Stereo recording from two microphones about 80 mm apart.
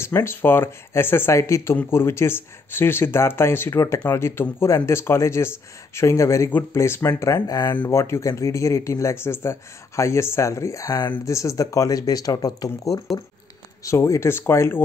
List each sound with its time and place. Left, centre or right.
0.0 s speech: left
7.9 s speech: left